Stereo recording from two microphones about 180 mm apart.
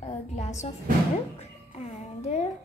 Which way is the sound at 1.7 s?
35° left (ahead or behind).